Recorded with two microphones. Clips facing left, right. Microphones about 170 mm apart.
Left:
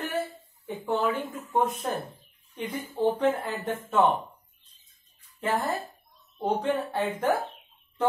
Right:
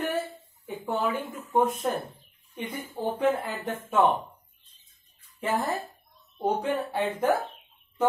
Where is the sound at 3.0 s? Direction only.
10° right (ahead or behind).